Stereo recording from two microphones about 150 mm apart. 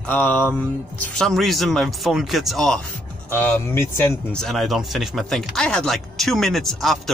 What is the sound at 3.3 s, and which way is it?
Speech, 15° left (ahead or behind).